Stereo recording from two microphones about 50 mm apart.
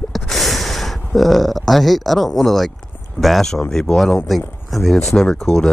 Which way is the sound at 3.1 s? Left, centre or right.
Centre.